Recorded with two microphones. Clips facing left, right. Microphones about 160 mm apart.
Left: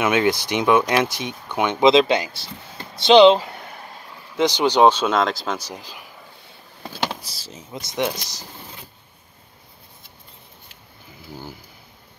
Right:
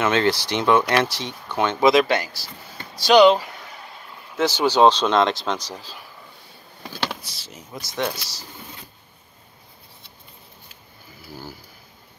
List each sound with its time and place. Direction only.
0.0 s speech: 15° left (ahead or behind)
7.2 s speech: 35° left (ahead or behind)
7.7 s speech: 20° left (ahead or behind)